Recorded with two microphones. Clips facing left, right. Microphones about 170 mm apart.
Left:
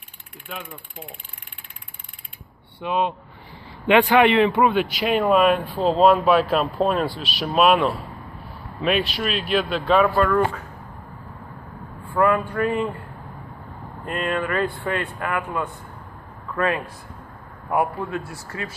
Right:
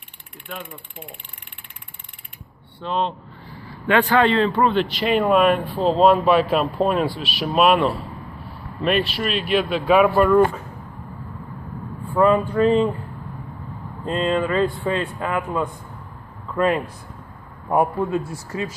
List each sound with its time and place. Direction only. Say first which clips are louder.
2.8 s a man's voice: left 1 dB; 10° left (ahead or behind)
9.9 s speech: right 4 dB; 10° right (ahead or behind)
12.2 s speech: right 3 dB; 20° right (ahead or behind)
14.0 s speech: right 4 dB; 25° right (ahead or behind)
18.0 s speech: right 5 dB; 20° right (ahead or behind)